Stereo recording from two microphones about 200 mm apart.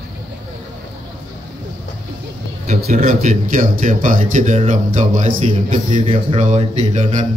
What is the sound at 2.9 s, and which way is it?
A man's voice, 35° right (ahead or behind).